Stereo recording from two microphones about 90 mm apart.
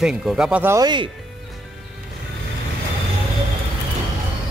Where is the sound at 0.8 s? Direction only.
60° right (ahead or behind).